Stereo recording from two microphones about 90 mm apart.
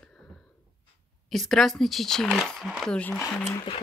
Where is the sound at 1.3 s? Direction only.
5° left (ahead or behind).